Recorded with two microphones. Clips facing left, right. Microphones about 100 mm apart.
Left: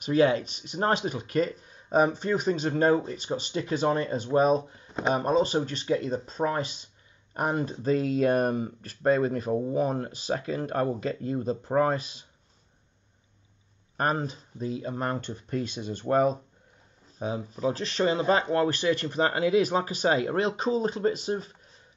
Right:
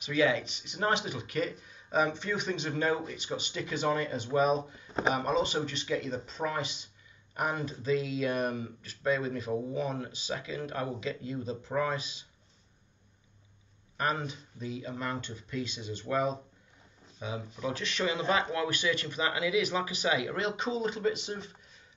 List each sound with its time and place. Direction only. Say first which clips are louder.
0.0 s speech: left 5 dB; 45° left (ahead or behind)
13.9 s speech: left 4 dB; 40° left (ahead or behind)